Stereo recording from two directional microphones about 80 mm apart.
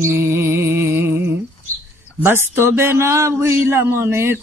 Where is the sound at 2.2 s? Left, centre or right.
Right.